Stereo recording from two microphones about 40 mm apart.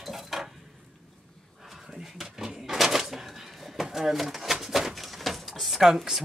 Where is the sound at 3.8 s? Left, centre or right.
Centre.